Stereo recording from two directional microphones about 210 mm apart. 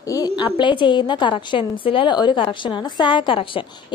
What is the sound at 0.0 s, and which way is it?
A woman's voice, 15° left (ahead or behind).